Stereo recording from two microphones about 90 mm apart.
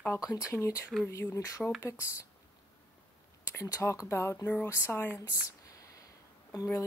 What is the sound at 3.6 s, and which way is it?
A woman's voice, 40° left (ahead or behind).